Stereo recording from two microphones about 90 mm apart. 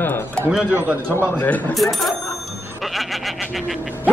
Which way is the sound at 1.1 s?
25° left (ahead or behind).